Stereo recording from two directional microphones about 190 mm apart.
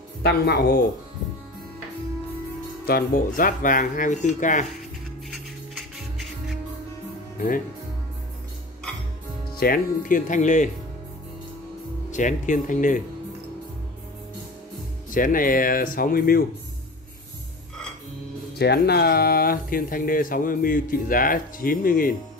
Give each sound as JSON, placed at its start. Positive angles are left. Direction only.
{"t": 0.2, "sound": "speech", "side_deg": 60}
{"t": 2.9, "sound": "speech", "side_deg": 50}
{"t": 5.3, "sound": "music", "side_deg": 0}
{"t": 7.3, "sound": "speech", "side_deg": 45}
{"t": 9.6, "sound": "speech", "side_deg": 50}
{"t": 12.1, "sound": "speech", "side_deg": 40}
{"t": 15.0, "sound": "speech", "side_deg": 45}
{"t": 18.6, "sound": "speech", "side_deg": 60}